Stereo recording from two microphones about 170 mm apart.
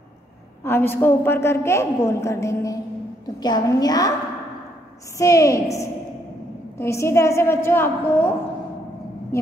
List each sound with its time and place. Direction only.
0.7 s a woman's voice: 15° left (ahead or behind)
5.1 s a woman's voice: 20° left (ahead or behind)